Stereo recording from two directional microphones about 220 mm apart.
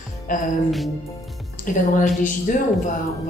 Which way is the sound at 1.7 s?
40° left (ahead or behind).